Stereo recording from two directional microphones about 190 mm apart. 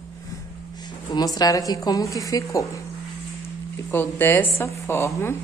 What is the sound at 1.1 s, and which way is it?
Speech, 20° left (ahead or behind).